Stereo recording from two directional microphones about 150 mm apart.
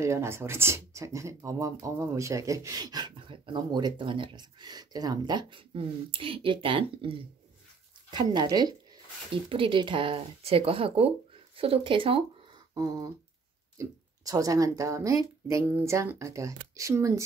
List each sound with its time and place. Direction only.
0.0 s speech: 20° right (ahead or behind); by 12.3 s 35° right (ahead or behind)
12.7 s speech: 25° right (ahead or behind)